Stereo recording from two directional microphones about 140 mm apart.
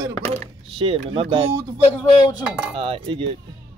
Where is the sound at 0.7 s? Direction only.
40° right (ahead or behind).